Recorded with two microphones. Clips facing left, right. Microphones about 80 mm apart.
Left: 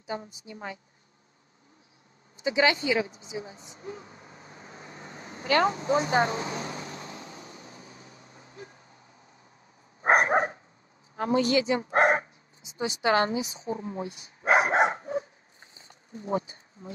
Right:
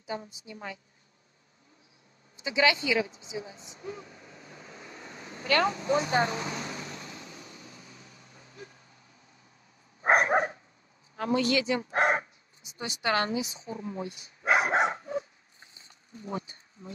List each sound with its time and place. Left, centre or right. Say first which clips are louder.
0.1 s a woman's voice: left 2 dB; left
2.4 s speech: left 2 dB; left
3.1 s a sound: left 1 dB; left
5.7 s vehicle: left 2 dB; left
10.0 s dog: left 1 dB; left
11.1 s a woman's voice: left 3 dB; left
13.4 s bow-wow: left 3 dB; left